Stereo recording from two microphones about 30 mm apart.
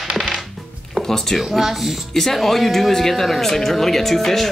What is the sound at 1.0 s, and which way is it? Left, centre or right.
Speech, centre.